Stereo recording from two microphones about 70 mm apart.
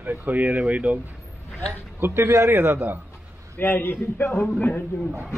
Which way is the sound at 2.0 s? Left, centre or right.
Right.